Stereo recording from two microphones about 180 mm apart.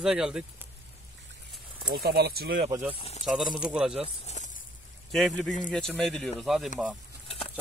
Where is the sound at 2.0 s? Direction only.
60° right (ahead or behind).